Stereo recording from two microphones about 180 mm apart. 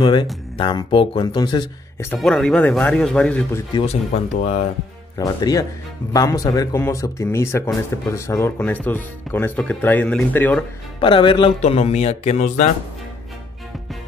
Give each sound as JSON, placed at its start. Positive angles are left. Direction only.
{"t": 0.0, "sound": "speech", "side_deg": 25}
{"t": 2.1, "sound": "speech", "side_deg": 5}
{"t": 3.7, "sound": "speech", "side_deg": 35}
{"t": 5.1, "sound": "speech", "side_deg": 20}
{"t": 11.0, "sound": "speech", "side_deg": 25}